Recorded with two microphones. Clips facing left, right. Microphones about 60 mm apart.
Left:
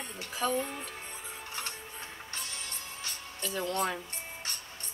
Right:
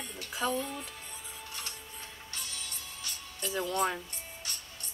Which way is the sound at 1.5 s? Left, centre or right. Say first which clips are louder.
Left 4 dB; left.